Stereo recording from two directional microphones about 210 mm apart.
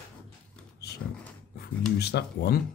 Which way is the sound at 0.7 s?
50° left (ahead or behind).